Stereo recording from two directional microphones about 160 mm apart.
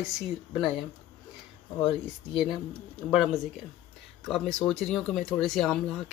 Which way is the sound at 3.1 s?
Centre (ahead or behind).